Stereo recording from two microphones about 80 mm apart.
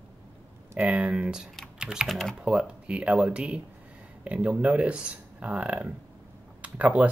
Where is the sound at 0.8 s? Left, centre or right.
Centre.